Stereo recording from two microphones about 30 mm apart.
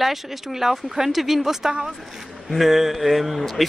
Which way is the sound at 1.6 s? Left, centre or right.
Centre.